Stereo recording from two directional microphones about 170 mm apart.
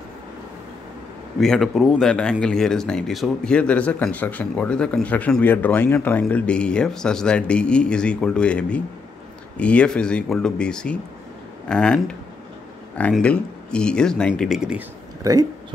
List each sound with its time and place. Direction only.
1.4 s speech: centre (ahead or behind)
15.2 s speech: 20° right (ahead or behind)